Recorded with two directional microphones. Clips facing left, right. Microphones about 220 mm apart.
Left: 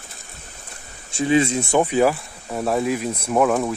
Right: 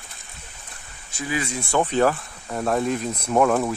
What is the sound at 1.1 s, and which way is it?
Speech, 25° left (ahead or behind).